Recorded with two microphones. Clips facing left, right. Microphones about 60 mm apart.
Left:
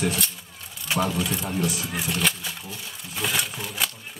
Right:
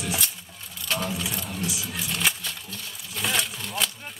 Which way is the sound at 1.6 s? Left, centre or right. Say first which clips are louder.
Left 5 dB; left.